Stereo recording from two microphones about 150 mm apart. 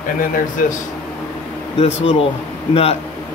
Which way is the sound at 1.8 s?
40° left (ahead or behind).